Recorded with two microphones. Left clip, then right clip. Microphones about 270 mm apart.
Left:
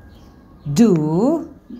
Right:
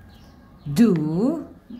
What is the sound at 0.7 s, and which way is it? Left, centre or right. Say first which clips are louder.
Speech: left 5 dB; centre.